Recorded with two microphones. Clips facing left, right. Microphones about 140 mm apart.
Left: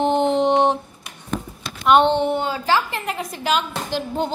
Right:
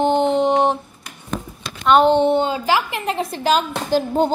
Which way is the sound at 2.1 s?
25° right (ahead or behind).